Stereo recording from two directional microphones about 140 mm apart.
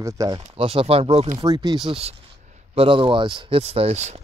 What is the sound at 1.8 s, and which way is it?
Speech, 45° right (ahead or behind).